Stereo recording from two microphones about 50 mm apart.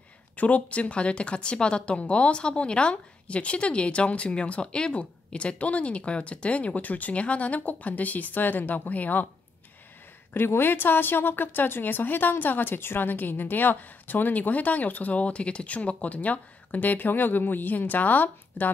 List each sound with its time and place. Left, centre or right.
0.4 s speech: left
10.3 s a woman's voice: left